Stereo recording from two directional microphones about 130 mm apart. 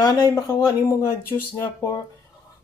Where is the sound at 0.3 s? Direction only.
20° left (ahead or behind).